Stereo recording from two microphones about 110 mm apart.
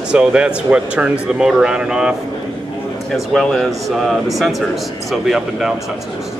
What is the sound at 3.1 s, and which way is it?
Speech, centre (ahead or behind).